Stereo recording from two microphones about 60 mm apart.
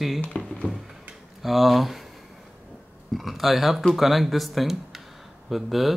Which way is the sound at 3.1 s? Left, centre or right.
Centre.